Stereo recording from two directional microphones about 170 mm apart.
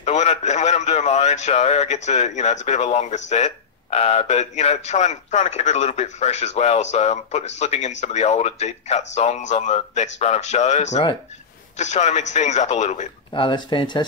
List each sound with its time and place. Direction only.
0.0 s a man's voice: 45° left (ahead or behind)
13.3 s speech: 30° left (ahead or behind)